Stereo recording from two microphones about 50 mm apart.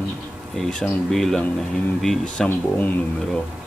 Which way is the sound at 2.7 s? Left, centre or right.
Left.